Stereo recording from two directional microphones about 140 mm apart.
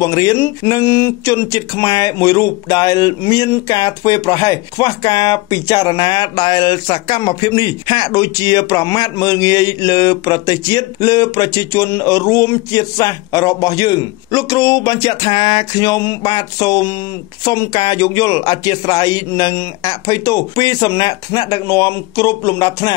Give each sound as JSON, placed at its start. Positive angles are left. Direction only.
{"t": 0.0, "sound": "speech", "side_deg": 25}